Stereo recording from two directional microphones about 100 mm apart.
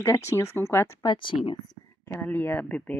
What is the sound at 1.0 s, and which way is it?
Speech, 50° left (ahead or behind).